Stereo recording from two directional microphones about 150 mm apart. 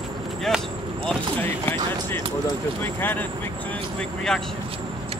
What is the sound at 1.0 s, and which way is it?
Speech, 15° left (ahead or behind).